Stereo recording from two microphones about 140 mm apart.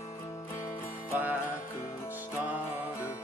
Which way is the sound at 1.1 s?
10° right (ahead or behind).